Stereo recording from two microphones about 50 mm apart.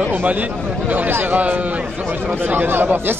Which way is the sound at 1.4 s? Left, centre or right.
Right.